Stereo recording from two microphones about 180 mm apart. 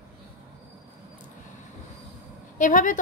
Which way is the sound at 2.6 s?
45° left (ahead or behind).